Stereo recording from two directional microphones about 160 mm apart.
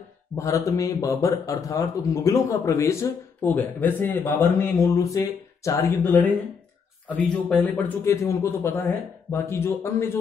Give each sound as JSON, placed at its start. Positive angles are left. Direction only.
{"t": 0.4, "sound": "a man's voice", "side_deg": 20}